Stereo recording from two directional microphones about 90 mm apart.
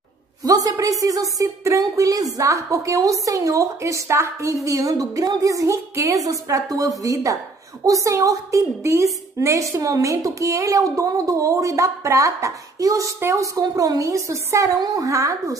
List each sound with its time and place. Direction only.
0.4 s a woman's voice: 40° right (ahead or behind)